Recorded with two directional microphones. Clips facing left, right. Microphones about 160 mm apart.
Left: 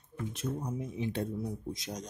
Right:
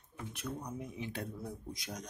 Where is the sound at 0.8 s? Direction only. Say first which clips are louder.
Left 7 dB; 25° left (ahead or behind).